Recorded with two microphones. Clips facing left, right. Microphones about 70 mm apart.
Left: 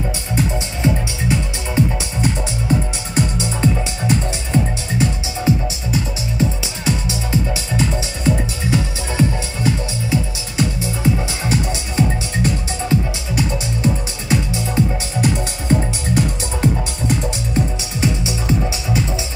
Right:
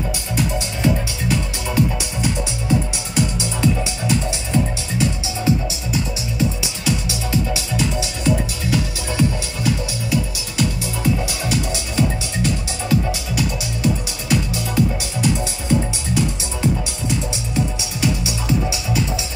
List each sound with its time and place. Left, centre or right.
0.4 s music: left
2.0 s music: left
15.1 s music: left